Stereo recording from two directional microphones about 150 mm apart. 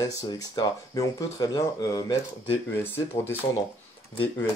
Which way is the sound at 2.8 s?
15° left (ahead or behind).